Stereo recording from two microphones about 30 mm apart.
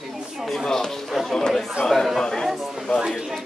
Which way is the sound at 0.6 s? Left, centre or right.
Centre.